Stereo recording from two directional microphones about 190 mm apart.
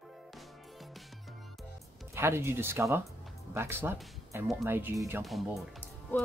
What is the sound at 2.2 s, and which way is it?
Speech, 15° right (ahead or behind).